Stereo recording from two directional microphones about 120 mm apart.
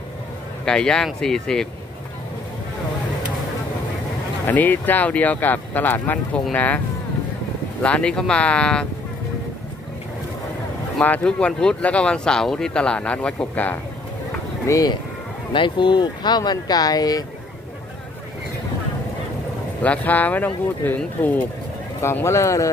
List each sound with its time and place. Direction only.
0.7 s speech: 5° left (ahead or behind)
4.5 s speech: 15° left (ahead or behind)
7.8 s speech: 10° left (ahead or behind)
11.0 s speech: 10° left (ahead or behind)
14.7 s speech: 30° left (ahead or behind)
19.8 s speech: 10° left (ahead or behind)